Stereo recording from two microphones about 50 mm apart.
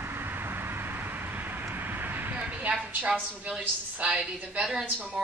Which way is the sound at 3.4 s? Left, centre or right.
Right.